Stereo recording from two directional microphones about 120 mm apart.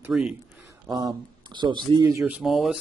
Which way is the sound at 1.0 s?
40° right (ahead or behind).